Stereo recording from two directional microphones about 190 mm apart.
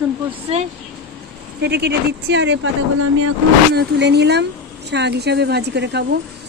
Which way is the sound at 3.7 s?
60° right (ahead or behind).